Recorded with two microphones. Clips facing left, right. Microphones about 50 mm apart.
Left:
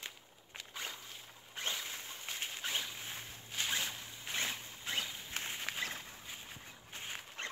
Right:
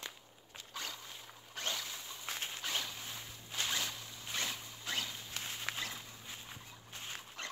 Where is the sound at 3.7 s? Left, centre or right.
Left.